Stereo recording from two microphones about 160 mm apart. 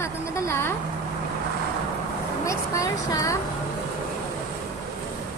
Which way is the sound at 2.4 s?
20° left (ahead or behind).